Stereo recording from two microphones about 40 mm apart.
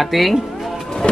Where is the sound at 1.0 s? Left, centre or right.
Left.